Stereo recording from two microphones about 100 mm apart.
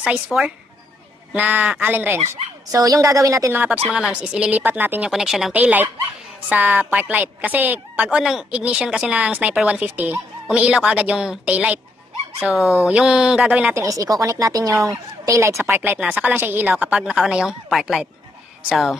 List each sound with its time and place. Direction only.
0.0 s a woman's voice: 10° right (ahead or behind)
2.7 s speech: 35° right (ahead or behind)
3.5 s a woman's voice: 15° right (ahead or behind)
5.1 s speech: 5° right (ahead or behind)
5.6 s a woman's voice: 15° right (ahead or behind)
13.7 s speech: 35° right (ahead or behind)
15.6 s a woman's voice: 20° right (ahead or behind); by 18.9 s centre (ahead or behind)